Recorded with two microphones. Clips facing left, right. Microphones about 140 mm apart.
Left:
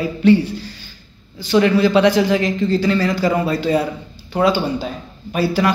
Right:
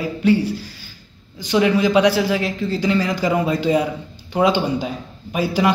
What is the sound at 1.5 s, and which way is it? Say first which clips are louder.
A man's voice: left 2 dB; 15° right (ahead or behind).